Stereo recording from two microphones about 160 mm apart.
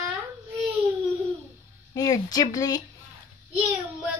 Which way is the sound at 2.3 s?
25° left (ahead or behind).